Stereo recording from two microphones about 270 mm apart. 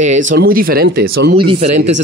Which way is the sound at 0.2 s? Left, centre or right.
Right.